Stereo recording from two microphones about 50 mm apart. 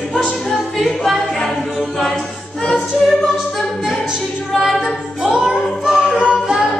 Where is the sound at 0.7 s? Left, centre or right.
Centre.